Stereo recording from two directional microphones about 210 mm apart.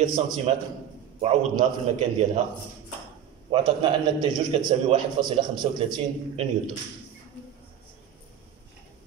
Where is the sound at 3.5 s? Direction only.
25° right (ahead or behind).